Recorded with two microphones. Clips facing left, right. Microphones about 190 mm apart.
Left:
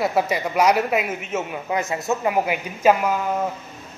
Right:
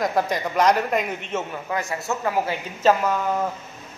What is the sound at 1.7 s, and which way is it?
A man's voice, 20° left (ahead or behind).